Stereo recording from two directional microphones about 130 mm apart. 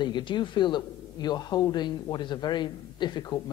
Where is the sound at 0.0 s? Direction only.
35° left (ahead or behind).